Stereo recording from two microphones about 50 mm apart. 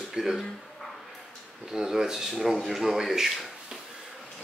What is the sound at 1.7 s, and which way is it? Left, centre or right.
Speech, centre.